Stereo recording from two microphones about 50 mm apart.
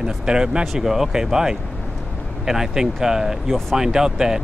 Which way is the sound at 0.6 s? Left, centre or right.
Centre.